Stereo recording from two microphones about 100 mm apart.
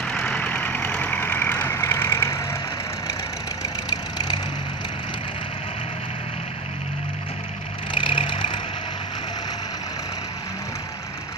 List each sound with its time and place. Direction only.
0.0 s vehicle: 10° left (ahead or behind); by 2.4 s 30° left (ahead or behind)
7.9 s vehicle: 60° left (ahead or behind)